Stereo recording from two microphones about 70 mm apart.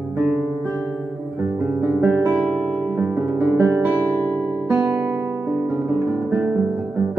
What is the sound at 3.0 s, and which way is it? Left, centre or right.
Music, right.